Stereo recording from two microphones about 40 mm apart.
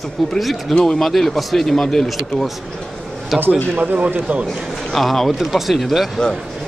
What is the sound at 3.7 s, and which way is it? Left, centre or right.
Speech, right.